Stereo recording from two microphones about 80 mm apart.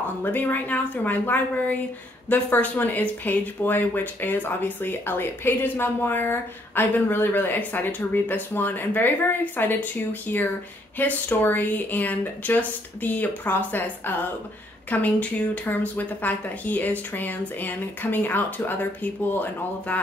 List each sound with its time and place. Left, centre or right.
0.2 s speech: left
11.0 s speech: left